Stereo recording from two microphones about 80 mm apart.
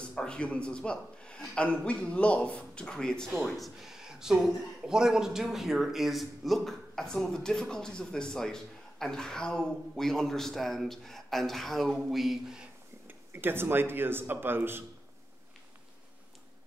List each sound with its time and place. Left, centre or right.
0.0 s a man's voice: centre
13.0 s speech: right